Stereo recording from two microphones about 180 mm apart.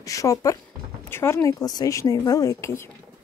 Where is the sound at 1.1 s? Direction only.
15° left (ahead or behind).